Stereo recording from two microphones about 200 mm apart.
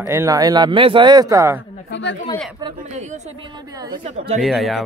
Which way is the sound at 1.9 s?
65° left (ahead or behind).